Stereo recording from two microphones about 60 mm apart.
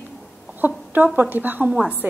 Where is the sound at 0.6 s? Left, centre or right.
Right.